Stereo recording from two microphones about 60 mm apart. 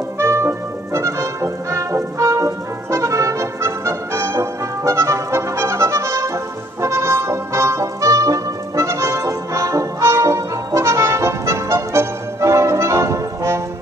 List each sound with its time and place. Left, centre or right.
0.2 s music: right
1.0 s music: right